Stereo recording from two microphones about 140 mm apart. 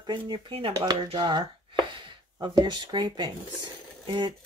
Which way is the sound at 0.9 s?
40° right (ahead or behind).